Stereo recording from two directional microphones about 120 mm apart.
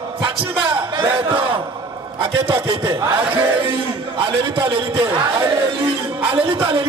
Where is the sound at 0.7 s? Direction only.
45° right (ahead or behind).